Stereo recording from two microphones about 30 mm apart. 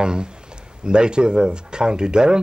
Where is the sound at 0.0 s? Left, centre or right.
Right.